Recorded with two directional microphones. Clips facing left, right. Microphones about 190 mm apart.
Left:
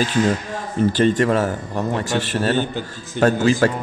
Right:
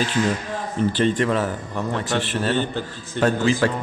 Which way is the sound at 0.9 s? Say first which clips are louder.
Left 4 dB; 45° left (ahead or behind).